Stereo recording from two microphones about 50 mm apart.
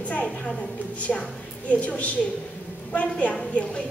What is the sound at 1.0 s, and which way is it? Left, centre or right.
A woman's voice, left.